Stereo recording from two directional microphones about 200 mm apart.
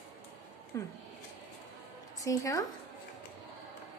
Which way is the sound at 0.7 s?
15° left (ahead or behind).